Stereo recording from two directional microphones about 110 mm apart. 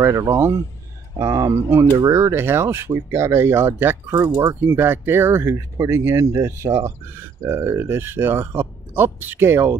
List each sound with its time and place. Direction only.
0.0 s speech: 30° right (ahead or behind)